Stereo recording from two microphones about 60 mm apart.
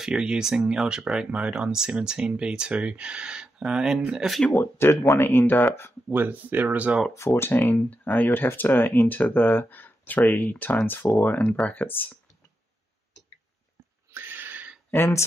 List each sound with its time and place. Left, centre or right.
0.0 s speech: centre
4.6 s speech: left
6.1 s speech: right
7.2 s speech: left
14.1 s a sound: right
15.0 s speech: left